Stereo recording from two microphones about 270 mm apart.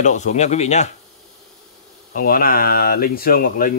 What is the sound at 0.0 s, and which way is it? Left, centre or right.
Speech, left.